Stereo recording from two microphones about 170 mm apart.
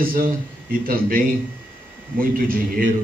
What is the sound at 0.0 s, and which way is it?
A man's voice, 60° right (ahead or behind).